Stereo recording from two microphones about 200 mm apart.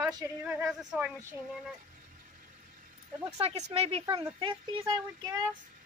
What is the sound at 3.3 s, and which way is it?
Speech, 30° right (ahead or behind).